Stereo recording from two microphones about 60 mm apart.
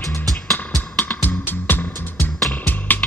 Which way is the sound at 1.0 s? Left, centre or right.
Left.